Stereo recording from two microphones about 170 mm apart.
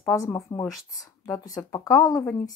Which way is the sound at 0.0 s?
15° left (ahead or behind).